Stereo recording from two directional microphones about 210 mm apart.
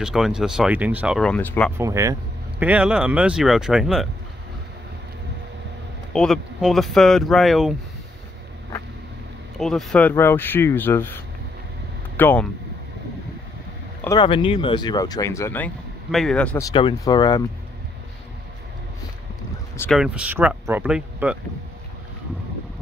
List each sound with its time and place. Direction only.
0.0 s speech: 5° right (ahead or behind)
1.8 s speech: 15° right (ahead or behind)
6.1 s speech: centre (ahead or behind)
9.6 s speech: centre (ahead or behind)
12.2 s speech: 10° left (ahead or behind)
14.0 s speech: 20° left (ahead or behind); by 16.4 s centre (ahead or behind)
16.5 s speech: 20° left (ahead or behind)
19.8 s speech: centre (ahead or behind)